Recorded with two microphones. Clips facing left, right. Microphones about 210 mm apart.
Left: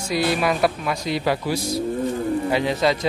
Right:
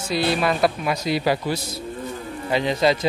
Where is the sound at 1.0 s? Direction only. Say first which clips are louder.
Right 1 dB; 5° right (ahead or behind).